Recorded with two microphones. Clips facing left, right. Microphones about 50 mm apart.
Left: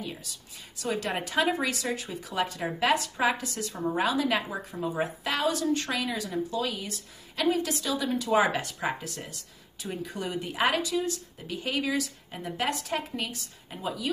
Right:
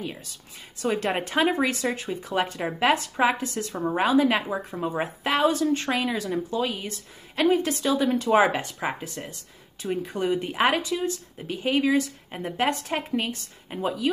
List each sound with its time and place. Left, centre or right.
0.7 s a woman's voice: right
8.4 s a woman's voice: right